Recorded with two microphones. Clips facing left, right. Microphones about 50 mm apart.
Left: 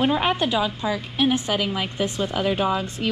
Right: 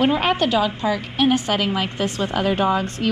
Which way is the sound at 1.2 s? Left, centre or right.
Right.